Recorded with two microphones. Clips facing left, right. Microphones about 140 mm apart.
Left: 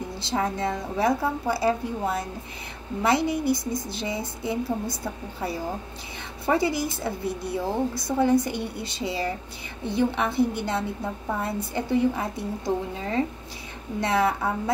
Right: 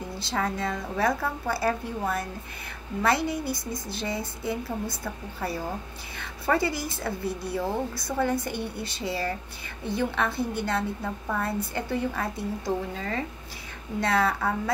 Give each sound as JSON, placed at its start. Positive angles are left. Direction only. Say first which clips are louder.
{"t": 0.2, "sound": "speech", "louder": "left 3 dB", "side_deg": 25}
{"t": 8.5, "sound": "speech", "louder": "left 1 dB", "side_deg": -25}
{"t": 8.8, "sound": "speech", "louder": "left 2 dB", "side_deg": 20}